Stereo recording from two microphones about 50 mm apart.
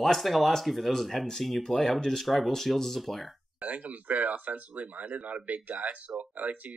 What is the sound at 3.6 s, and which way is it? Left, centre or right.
Speech, right.